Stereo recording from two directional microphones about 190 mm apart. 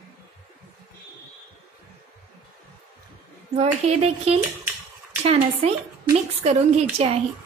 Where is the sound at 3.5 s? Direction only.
35° right (ahead or behind).